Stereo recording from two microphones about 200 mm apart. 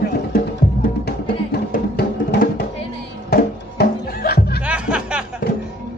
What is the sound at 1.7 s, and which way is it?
Music, 50° left (ahead or behind).